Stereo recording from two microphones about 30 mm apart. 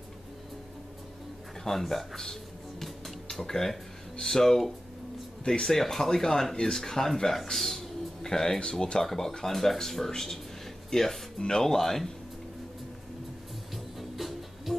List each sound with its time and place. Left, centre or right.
1.6 s speech: centre
3.3 s speech: centre
5.4 s speech: left
5.8 s speech: centre
13.9 s music: centre